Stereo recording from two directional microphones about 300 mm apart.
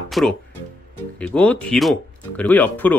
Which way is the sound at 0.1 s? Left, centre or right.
Centre.